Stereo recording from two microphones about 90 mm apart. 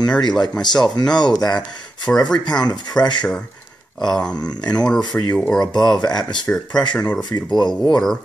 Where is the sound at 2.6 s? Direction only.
50° left (ahead or behind).